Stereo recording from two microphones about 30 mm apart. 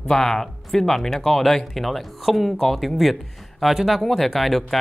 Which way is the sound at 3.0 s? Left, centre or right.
Centre.